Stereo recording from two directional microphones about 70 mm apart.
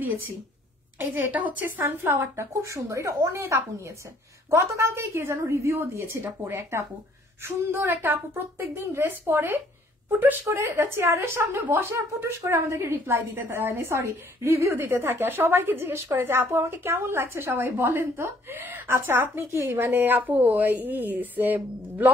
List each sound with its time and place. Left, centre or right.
0.9 s a woman's voice: right
2.6 s a woman's voice: right